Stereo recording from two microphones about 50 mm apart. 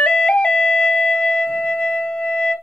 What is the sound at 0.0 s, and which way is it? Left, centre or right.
Music, centre.